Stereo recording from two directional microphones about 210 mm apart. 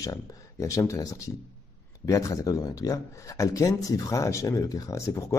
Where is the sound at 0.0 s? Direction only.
15° left (ahead or behind).